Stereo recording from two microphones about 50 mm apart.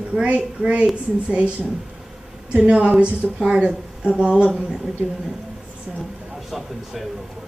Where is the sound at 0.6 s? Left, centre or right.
Centre.